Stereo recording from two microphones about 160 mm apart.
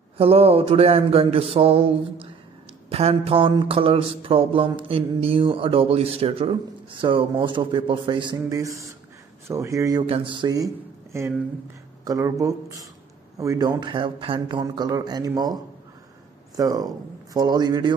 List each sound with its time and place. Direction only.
0.2 s speech: 35° right (ahead or behind)
8.4 s a man's voice: 20° right (ahead or behind)
10.0 s a man's voice: 35° right (ahead or behind)